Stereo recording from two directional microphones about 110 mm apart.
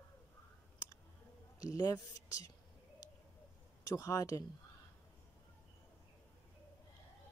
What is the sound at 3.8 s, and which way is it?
Speech, 30° left (ahead or behind).